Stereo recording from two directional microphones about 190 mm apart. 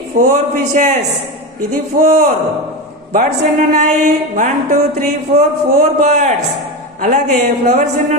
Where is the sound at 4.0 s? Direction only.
40° right (ahead or behind).